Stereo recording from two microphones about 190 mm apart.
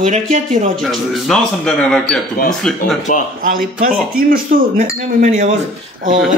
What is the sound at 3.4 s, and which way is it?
Speech, 45° right (ahead or behind).